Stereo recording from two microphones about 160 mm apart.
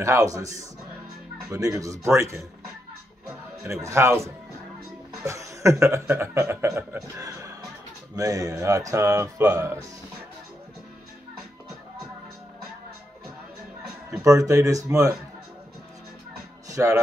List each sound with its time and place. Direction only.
0.0 s speech: 20° right (ahead or behind)
3.8 s speech: 15° right (ahead or behind)
14.2 s speech: 20° right (ahead or behind)
16.6 s speech: 20° right (ahead or behind)